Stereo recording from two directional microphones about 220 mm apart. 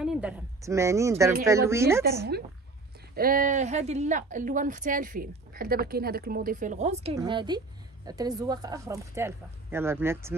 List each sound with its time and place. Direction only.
0.0 s speech: 5° right (ahead or behind)
3.2 s a woman's voice: 40° right (ahead or behind); by 10.3 s 10° right (ahead or behind)